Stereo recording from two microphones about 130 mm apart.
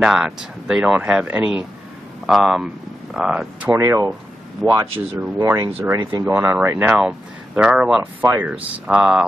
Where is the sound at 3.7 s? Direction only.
20° right (ahead or behind).